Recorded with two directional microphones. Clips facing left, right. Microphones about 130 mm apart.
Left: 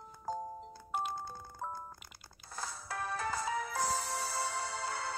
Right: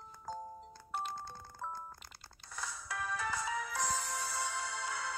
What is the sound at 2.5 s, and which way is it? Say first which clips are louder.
Music: left 2 dB; 35° left (ahead or behind).